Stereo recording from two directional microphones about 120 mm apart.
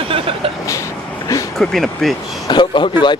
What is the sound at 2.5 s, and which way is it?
Speech, 40° left (ahead or behind).